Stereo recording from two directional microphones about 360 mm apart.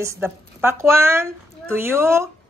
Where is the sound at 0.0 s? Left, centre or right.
Centre.